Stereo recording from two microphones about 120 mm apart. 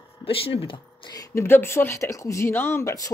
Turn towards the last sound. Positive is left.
turn(degrees=30)  # may be behind; listen again after turning